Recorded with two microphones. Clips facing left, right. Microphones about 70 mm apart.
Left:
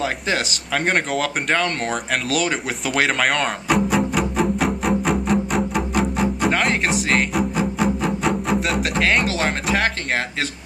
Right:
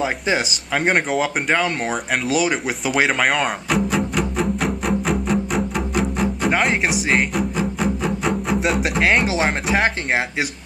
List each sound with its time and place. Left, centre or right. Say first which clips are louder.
0.0 s a sound: right 2 dB; centre
6.5 s music: right 1 dB; centre
9.2 s speech: right 2 dB; centre